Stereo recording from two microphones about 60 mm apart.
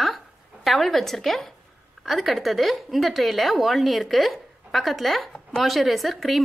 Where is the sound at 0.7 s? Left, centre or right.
Centre.